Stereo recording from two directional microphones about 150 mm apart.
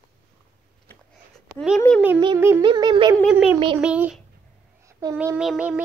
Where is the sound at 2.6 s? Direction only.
30° right (ahead or behind).